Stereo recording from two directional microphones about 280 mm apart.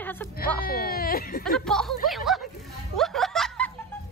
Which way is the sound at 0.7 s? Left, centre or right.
Left.